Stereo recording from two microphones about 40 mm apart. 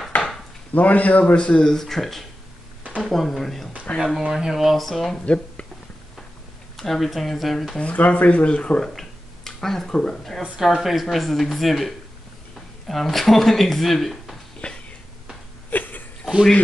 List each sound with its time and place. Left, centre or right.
0.1 s dishes: left
0.7 s speech: left
1.3 s speech: left
1.7 s speech: centre
4.2 s speech: centre
4.7 s speech: centre
5.2 s speech: left
6.8 s speech: centre
7.8 s speech: left
8.8 s speech: centre
10.6 s speech: centre
14.6 s a sound: left
15.7 s a sound: left